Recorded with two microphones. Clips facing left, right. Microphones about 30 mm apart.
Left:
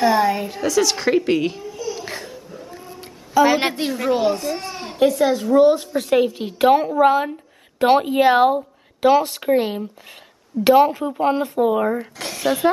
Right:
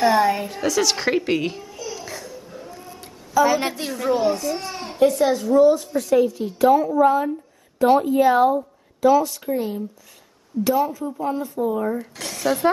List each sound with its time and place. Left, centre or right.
0.0 s a woman's voice: centre
2.0 s laughter: left
2.9 s a sound: left
3.4 s a woman's voice: left
4.3 s speech: left
5.0 s a woman's voice: left
12.2 s a woman's voice: centre